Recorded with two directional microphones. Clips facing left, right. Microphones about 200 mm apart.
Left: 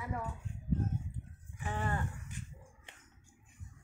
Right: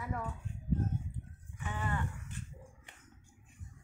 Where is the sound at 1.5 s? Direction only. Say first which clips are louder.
Left 1 dB; 40° left (ahead or behind).